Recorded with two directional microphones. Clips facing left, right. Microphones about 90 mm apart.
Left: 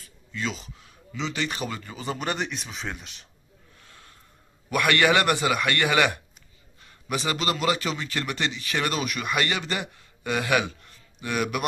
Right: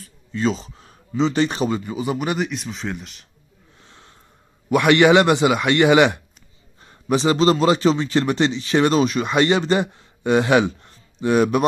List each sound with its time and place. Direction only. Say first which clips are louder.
0.0 s speech: right 10 dB; 35° right (ahead or behind)
1.8 s speech: right 8 dB; 15° right (ahead or behind)
3.8 s snort: right 4 dB; 25° right (ahead or behind)
4.6 s a man's voice: right 8 dB; 20° right (ahead or behind)
6.8 s a man's voice: right 10 dB; 30° right (ahead or behind)